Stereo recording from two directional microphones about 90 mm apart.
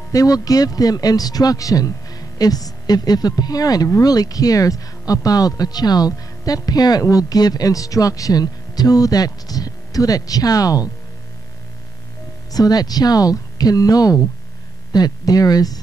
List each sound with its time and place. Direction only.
0.1 s speech: 40° left (ahead or behind)
12.5 s speech: 45° left (ahead or behind)